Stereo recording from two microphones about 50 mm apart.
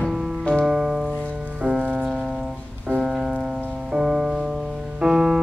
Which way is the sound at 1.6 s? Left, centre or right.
Right.